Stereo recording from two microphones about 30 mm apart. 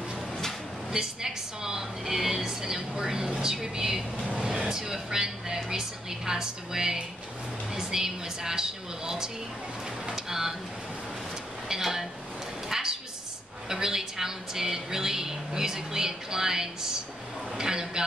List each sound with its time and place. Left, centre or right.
0.9 s a woman's voice: centre
11.7 s speech: centre
12.6 s a sound: centre
13.7 s a woman's voice: centre